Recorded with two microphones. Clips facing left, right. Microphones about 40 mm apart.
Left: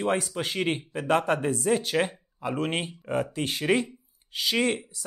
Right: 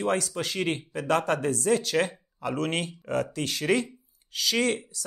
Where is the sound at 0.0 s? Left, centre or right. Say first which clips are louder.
Even; left.